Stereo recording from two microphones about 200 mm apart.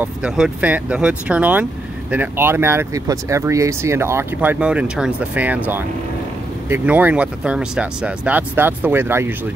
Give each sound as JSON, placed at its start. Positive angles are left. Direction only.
{"t": 0.0, "sound": "speech", "side_deg": -5}
{"t": 6.7, "sound": "speech", "side_deg": -10}